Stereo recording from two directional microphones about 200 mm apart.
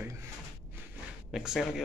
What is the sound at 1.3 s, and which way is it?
Speech, centre (ahead or behind).